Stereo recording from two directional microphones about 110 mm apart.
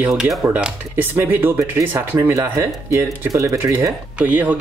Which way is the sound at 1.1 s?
20° right (ahead or behind).